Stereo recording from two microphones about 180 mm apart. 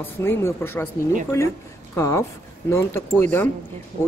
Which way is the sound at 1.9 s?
15° left (ahead or behind).